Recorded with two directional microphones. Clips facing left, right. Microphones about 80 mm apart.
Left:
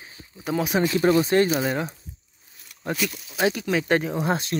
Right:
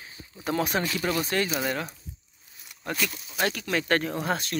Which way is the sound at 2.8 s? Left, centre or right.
Centre.